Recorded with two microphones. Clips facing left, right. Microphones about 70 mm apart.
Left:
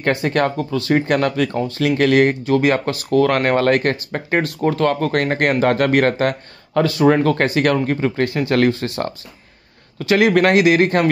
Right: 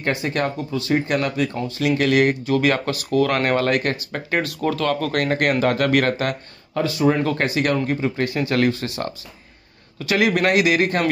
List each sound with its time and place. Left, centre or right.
0.0 s speech: left
6.7 s speech: left
7.2 s speech: left